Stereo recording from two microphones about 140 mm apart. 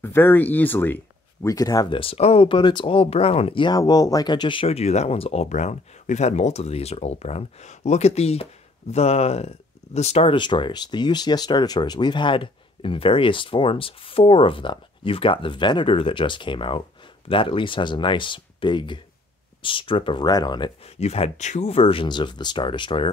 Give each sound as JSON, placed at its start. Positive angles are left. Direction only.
{"t": 0.0, "sound": "speech", "side_deg": 15}
{"t": 1.5, "sound": "speech", "side_deg": 25}
{"t": 20.8, "sound": "speech", "side_deg": 45}